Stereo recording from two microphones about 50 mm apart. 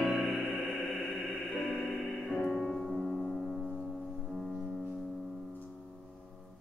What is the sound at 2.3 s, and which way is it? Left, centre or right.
Music, centre.